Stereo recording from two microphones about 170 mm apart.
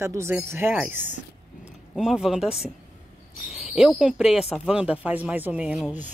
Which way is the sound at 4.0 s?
5° right (ahead or behind).